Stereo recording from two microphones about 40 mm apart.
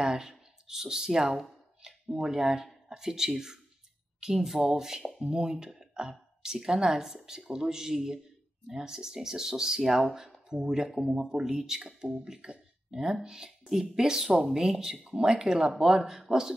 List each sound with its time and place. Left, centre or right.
0.0 s a woman's voice: centre